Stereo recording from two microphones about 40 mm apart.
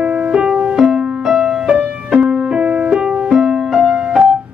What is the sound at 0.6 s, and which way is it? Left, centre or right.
Music, centre.